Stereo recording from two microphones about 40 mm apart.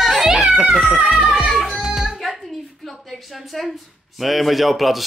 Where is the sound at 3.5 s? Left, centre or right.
Centre.